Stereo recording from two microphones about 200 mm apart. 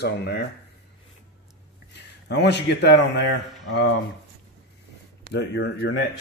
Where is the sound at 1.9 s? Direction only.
60° left (ahead or behind).